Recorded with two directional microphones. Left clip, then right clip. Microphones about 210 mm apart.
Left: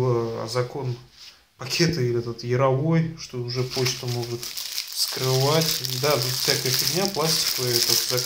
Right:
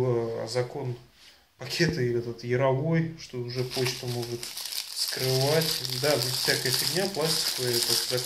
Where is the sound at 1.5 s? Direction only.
10° left (ahead or behind).